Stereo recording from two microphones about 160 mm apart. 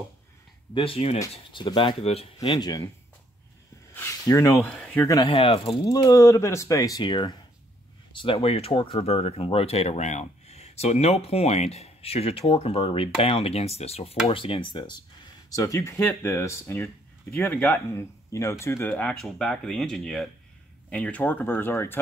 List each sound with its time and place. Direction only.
0.7 s speech: 35° left (ahead or behind)
1.3 s speech: 30° left (ahead or behind)
2.3 s speech: 25° left (ahead or behind)
3.9 s a sound: 15° left (ahead or behind)
4.6 s speech: 5° left (ahead or behind)
5.0 s speech: 20° left (ahead or behind)
5.3 s speech: 35° left (ahead or behind)
5.9 s speech: 20° left (ahead or behind)